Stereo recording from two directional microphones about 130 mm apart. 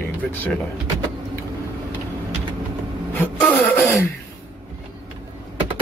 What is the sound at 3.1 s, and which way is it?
Vehicle, 10° left (ahead or behind).